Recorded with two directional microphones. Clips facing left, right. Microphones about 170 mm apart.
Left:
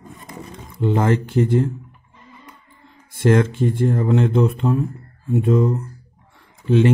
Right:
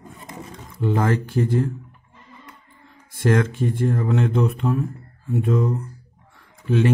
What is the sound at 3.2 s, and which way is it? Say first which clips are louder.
Speech: left 3 dB; 25° left (ahead or behind).